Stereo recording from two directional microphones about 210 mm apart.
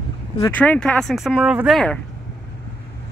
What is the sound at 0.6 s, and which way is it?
Speech, 5° left (ahead or behind).